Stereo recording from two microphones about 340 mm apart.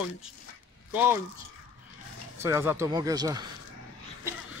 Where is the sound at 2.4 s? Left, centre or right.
Centre.